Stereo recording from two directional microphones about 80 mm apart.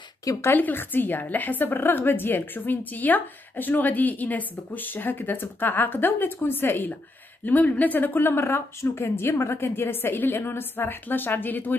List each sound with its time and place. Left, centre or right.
0.2 s a woman's voice: left
0.5 s a woman's voice: left